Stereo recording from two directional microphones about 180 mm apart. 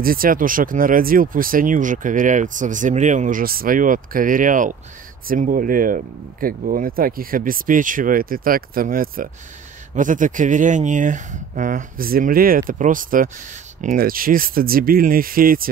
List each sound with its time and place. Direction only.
0.0 s speech: 55° right (ahead or behind)